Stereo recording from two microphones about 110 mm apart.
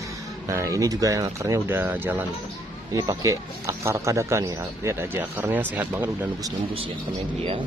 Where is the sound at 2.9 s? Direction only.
35° right (ahead or behind).